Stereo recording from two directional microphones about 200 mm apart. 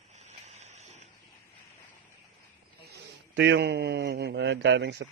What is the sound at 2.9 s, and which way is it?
A man's voice, 60° right (ahead or behind).